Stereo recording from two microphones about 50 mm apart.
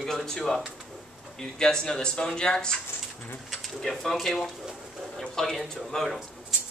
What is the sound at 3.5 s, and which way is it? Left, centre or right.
A man's voice, centre.